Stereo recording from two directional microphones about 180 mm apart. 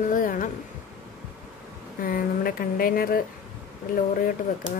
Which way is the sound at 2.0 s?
50° left (ahead or behind).